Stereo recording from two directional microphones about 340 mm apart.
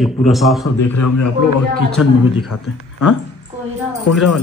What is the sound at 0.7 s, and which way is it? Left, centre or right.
Speech, left.